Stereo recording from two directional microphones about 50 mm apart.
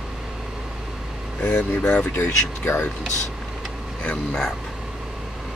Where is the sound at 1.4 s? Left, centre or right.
Left.